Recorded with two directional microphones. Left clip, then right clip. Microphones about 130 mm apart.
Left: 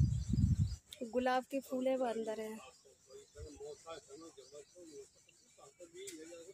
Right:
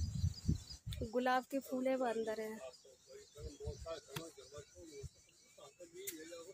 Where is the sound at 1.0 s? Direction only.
15° left (ahead or behind).